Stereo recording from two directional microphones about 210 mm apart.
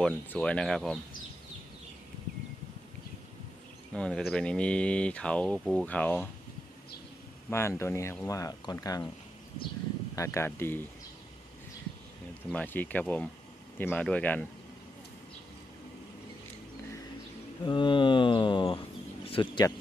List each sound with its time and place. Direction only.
0.0 s speech: 5° left (ahead or behind)
3.9 s speech: 5° left (ahead or behind)
7.4 s speech: 10° left (ahead or behind)
10.1 s speech: 15° left (ahead or behind)
12.4 s speech: 10° left (ahead or behind)
17.6 s mantra: 20° left (ahead or behind)